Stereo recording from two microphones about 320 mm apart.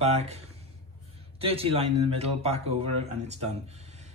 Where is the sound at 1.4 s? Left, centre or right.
Centre.